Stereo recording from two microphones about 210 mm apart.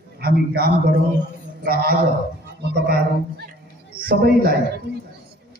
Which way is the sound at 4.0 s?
45° right (ahead or behind).